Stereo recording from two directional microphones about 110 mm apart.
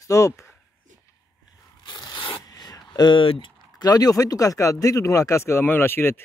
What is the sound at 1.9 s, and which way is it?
Zipper, 45° left (ahead or behind).